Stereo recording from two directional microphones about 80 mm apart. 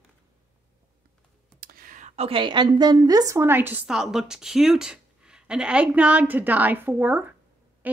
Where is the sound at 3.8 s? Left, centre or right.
Centre; by 7.4 s right.